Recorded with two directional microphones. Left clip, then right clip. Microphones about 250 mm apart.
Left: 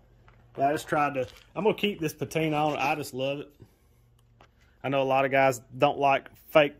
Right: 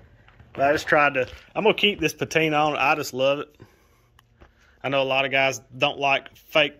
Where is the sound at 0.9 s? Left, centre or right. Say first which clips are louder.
Right 7 dB; centre.